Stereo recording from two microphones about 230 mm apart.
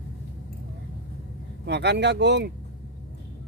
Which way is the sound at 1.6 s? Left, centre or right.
Right.